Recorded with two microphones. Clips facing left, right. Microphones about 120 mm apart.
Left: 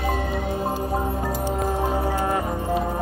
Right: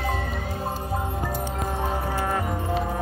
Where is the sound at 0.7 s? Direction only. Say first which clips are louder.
Left 4 dB; 40° left (ahead or behind).